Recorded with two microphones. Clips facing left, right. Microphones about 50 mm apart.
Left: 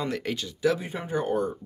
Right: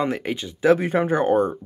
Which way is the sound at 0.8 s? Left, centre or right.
Right.